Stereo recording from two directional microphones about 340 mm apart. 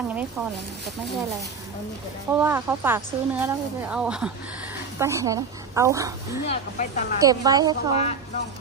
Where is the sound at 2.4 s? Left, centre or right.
Centre.